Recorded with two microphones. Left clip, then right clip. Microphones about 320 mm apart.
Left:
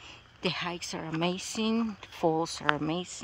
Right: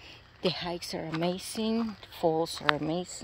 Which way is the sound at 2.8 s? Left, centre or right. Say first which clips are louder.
Even; left.